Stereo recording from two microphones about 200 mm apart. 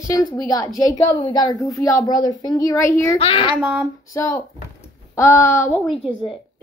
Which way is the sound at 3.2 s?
30° left (ahead or behind).